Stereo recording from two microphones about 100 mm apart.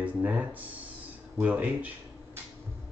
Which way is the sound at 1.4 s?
15° right (ahead or behind).